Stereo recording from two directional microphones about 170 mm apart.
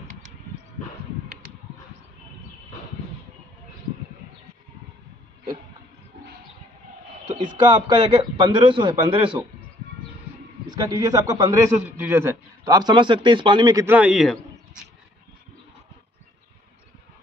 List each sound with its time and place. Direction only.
7.3 s a man's voice: 30° right (ahead or behind)
10.9 s a man's voice: 20° right (ahead or behind); by 14.9 s centre (ahead or behind)